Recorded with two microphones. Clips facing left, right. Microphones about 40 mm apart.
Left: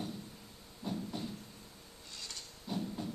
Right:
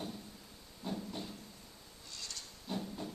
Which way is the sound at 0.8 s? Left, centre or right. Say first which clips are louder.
Left 1 dB; centre.